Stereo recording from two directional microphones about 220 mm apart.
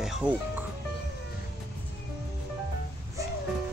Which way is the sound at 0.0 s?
5° right (ahead or behind).